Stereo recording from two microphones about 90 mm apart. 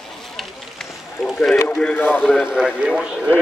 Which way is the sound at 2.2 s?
5° right (ahead or behind).